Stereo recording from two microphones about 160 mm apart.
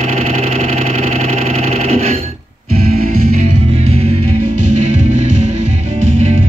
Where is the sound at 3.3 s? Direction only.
40° right (ahead or behind).